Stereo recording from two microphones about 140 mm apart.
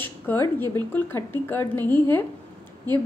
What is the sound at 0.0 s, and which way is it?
A woman's voice, 15° left (ahead or behind).